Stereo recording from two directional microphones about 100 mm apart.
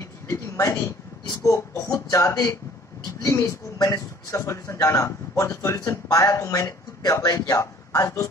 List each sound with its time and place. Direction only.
0.3 s speech: 30° left (ahead or behind)